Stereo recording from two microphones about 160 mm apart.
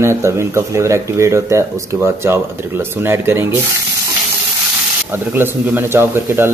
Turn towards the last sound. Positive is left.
turn(degrees=-15)  # may be behind; listen again after turning